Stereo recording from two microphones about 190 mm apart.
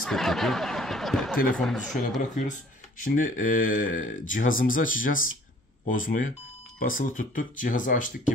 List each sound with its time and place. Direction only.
0.0 s speech: centre (ahead or behind)
3.0 s speech: 45° left (ahead or behind)